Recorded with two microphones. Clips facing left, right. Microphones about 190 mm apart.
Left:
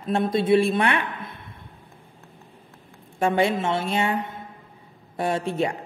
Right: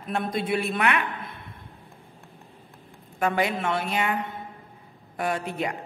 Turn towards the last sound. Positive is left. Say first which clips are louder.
# left 4 dB
turn(degrees=25)  # may be behind; listen again after turning